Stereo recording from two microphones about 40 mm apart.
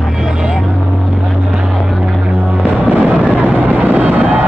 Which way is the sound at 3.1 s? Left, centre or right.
Right.